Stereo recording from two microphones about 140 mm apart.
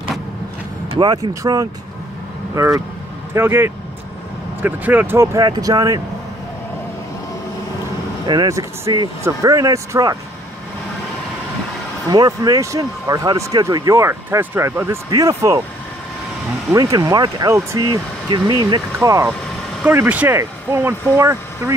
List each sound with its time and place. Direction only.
0.8 s speech: 35° right (ahead or behind)
8.3 s speech: 25° right (ahead or behind)
12.1 s speech: 25° right (ahead or behind)
16.7 s speech: 25° right (ahead or behind)